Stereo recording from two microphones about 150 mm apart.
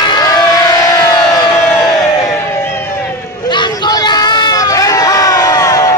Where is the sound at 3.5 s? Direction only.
30° left (ahead or behind).